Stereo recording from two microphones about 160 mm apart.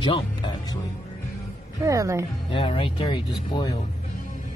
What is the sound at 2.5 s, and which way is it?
Speech, 35° left (ahead or behind).